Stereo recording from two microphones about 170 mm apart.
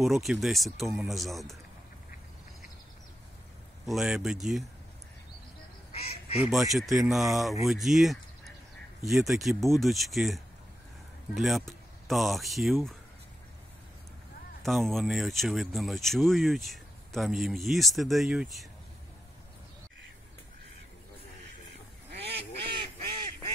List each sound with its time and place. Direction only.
0.0 s speech: centre (ahead or behind)
3.8 s speech: centre (ahead or behind)
5.9 s goose: 35° left (ahead or behind)
6.5 s speech: centre (ahead or behind)
14.6 s speech: centre (ahead or behind)